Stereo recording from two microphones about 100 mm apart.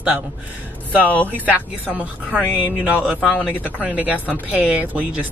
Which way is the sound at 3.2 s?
10° right (ahead or behind).